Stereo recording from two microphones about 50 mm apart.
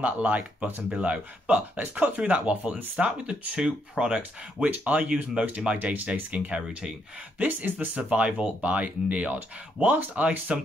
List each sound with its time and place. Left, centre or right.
0.0 s speech: right
3.1 s speech: centre
4.2 s speech: right; by 7.0 s centre
7.3 s speech: right